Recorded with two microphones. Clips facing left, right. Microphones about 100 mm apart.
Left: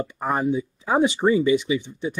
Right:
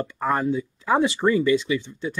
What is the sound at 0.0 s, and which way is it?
Speech, 15° left (ahead or behind).